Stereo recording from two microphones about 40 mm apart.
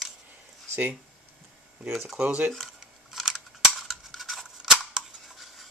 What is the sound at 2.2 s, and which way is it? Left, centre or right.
Speech, right.